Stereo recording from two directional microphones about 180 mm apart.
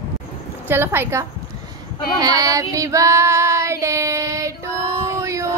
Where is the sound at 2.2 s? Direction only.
20° right (ahead or behind).